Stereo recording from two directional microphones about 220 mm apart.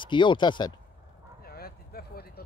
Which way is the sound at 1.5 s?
45° left (ahead or behind).